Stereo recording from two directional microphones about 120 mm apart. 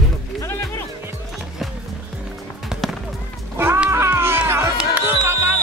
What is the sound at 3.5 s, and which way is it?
Music, 20° right (ahead or behind).